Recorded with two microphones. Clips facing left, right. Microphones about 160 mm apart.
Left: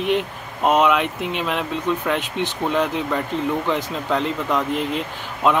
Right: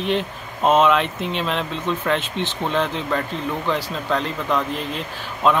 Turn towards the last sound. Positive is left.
turn(degrees=15)  # may be behind; listen again after turning